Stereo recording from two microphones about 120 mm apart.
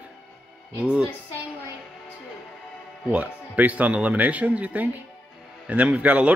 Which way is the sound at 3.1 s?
10° right (ahead or behind).